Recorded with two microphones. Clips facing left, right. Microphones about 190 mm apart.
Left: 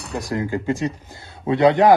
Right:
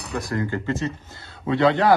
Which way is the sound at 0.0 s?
Centre (ahead or behind).